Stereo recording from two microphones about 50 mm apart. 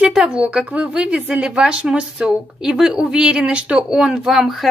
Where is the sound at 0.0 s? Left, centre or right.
Centre.